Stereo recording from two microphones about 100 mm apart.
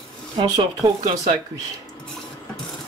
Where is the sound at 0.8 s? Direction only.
30° right (ahead or behind).